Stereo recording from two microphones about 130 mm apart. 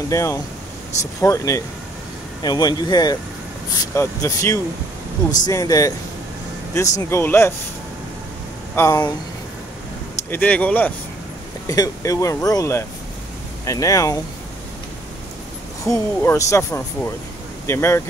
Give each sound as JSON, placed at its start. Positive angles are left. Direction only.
{"t": 0.1, "sound": "speech", "side_deg": 25}
{"t": 3.9, "sound": "speech", "side_deg": 20}
{"t": 8.7, "sound": "speech", "side_deg": 25}
{"t": 10.3, "sound": "speech", "side_deg": 10}
{"t": 11.6, "sound": "speech", "side_deg": 25}
{"t": 15.9, "sound": "speech", "side_deg": 25}